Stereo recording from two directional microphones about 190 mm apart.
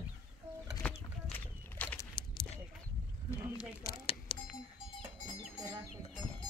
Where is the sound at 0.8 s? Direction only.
5° left (ahead or behind).